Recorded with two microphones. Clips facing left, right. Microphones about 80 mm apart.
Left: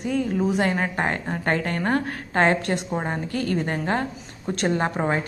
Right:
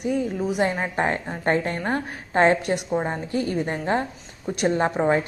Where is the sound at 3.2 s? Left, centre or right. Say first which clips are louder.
Right 1 dB; right.